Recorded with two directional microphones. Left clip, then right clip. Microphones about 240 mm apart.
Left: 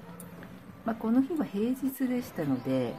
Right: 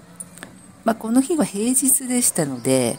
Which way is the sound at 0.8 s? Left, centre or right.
Right.